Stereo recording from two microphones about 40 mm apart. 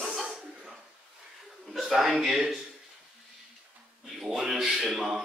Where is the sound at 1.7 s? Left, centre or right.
Centre.